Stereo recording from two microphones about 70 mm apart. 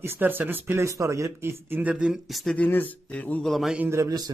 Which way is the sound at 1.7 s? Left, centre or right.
Centre.